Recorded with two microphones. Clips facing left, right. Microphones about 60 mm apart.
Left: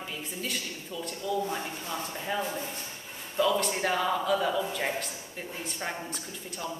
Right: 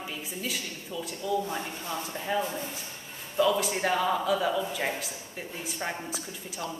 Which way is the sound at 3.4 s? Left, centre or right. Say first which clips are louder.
Right 1 dB; centre.